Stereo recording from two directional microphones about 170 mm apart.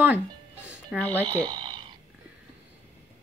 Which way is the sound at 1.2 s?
25° right (ahead or behind).